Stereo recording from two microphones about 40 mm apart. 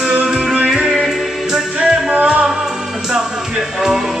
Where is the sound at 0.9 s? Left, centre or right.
Centre.